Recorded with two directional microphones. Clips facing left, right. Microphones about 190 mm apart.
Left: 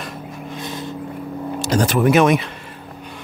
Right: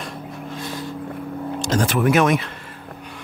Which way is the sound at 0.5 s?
20° left (ahead or behind).